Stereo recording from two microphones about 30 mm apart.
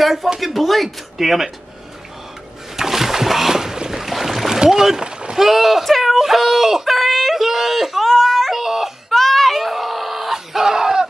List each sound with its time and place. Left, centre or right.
0.4 s speech: centre
2.7 s boat: centre
4.0 s boat: centre
4.6 s speech: centre
5.0 s rowboat: right
5.4 s speech: centre
5.9 s a sound: centre
6.1 s a sound: centre
6.9 s yodeling: centre
7.3 s a sound: centre
8.1 s yodeling: centre
8.5 s yodeling: centre
9.1 s a sound: centre
9.6 s chicken: centre